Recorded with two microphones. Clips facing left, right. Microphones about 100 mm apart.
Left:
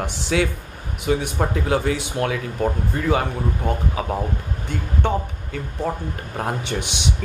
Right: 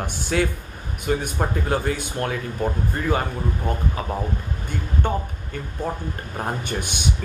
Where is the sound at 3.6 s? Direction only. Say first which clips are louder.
Left 3 dB; 10° left (ahead or behind).